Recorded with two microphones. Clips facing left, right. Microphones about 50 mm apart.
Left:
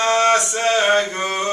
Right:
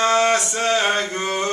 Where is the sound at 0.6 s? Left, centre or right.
Centre.